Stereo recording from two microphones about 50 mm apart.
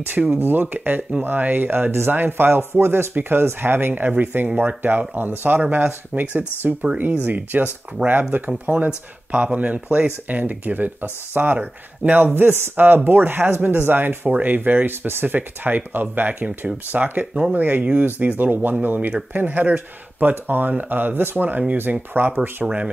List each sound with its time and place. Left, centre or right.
0.3 s speech: right
11.5 s speech: right
12.4 s speech: right
22.2 s speech: right
22.6 s speech: centre